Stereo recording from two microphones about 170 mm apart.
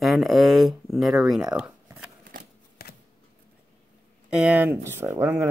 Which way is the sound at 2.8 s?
65° left (ahead or behind).